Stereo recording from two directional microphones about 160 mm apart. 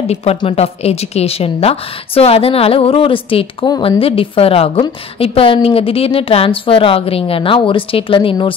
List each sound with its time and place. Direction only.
0.0 s a woman's voice: 40° left (ahead or behind)